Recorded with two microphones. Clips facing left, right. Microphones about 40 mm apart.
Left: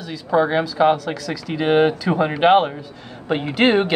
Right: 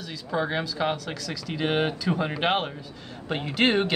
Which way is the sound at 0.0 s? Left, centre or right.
Centre.